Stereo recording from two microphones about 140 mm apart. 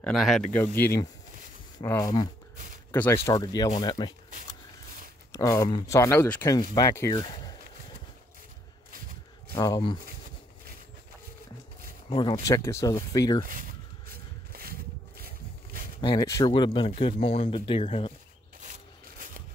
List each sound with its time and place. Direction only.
0.0 s speech: centre (ahead or behind)
0.5 s speech: 15° left (ahead or behind)
2.5 s a sound: 70° right (ahead or behind)
2.9 s speech: 15° left (ahead or behind)
5.3 s speech: 20° left (ahead or behind)
6.2 s speech: 10° left (ahead or behind)
6.5 s speech: 25° left (ahead or behind)
9.7 s speech: 40° left (ahead or behind)
12.1 s speech: 40° left (ahead or behind)
12.4 s speech: 20° left (ahead or behind)
13.4 s a sound: 85° right
16.0 s speech: 30° left (ahead or behind)